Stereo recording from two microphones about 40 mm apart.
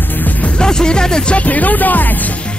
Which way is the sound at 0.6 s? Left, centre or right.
Centre.